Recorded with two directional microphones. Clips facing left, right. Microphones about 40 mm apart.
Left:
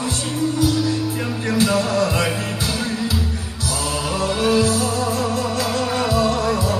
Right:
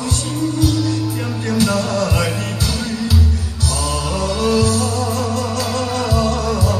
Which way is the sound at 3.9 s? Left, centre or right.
Left.